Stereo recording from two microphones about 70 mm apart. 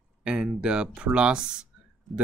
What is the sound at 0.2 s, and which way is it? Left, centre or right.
Speech, centre.